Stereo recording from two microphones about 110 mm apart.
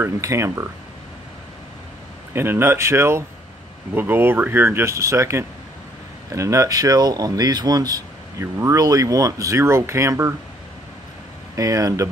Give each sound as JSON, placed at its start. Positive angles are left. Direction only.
{"t": 0.0, "sound": "speech", "side_deg": -25}
{"t": 2.3, "sound": "speech", "side_deg": -20}
{"t": 11.5, "sound": "speech", "side_deg": -30}